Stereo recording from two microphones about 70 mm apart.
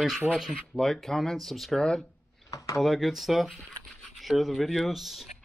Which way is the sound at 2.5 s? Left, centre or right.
Left.